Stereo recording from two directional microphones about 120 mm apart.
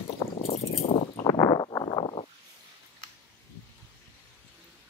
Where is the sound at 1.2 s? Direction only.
35° left (ahead or behind).